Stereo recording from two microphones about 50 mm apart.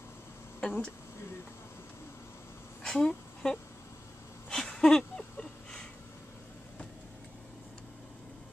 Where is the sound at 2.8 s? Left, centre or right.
Centre.